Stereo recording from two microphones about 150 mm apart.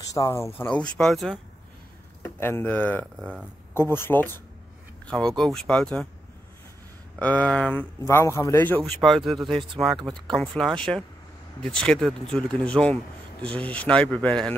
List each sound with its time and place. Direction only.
0.0 s speech: 25° left (ahead or behind)
0.6 s speech: 10° left (ahead or behind)
2.2 s speech: 15° left (ahead or behind)
3.2 s speech: 5° right (ahead or behind)
3.9 s speech: 15° left (ahead or behind)
5.0 s a sound: 5° left (ahead or behind)
5.4 s speech: 5° left (ahead or behind)
7.2 s speech: 10° left (ahead or behind)
9.3 s speech: centre (ahead or behind)